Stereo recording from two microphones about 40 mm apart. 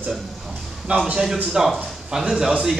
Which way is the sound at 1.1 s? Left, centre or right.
Centre.